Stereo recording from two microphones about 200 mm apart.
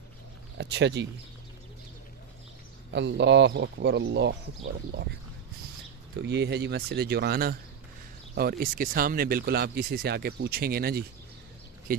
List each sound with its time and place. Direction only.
0.6 s speech: 60° right (ahead or behind)
2.9 s speech: 60° right (ahead or behind)
6.1 s speech: 60° right (ahead or behind)